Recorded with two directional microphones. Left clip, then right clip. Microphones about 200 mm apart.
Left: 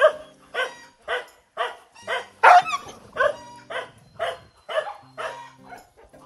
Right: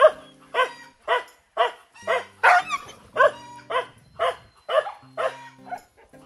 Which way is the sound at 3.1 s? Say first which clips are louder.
Right 4 dB; 15° right (ahead or behind).